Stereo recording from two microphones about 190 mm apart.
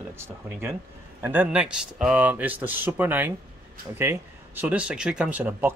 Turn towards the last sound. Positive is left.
turn(degrees=-10)  # may be behind; listen again after turning